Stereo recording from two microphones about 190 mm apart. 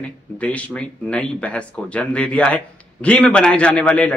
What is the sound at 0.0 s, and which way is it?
Speech, 5° left (ahead or behind).